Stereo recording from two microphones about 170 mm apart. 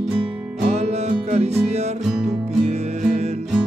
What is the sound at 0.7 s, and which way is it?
Music, 40° right (ahead or behind).